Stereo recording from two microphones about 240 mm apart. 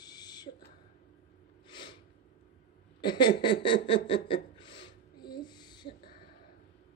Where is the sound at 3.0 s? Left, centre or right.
Centre.